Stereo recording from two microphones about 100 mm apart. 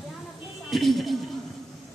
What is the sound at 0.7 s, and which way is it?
Speech, centre (ahead or behind).